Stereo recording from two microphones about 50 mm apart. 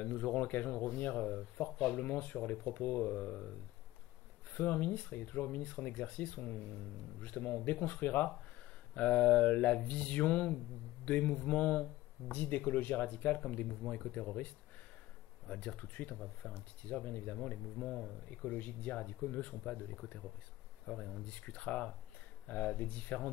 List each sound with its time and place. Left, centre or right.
0.0 s speech: left
4.6 s speech: left
17.4 s speech: left
18.3 s speech: left